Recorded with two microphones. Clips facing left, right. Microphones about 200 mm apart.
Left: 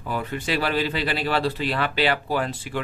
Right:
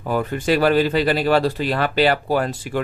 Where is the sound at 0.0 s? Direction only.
45° right (ahead or behind).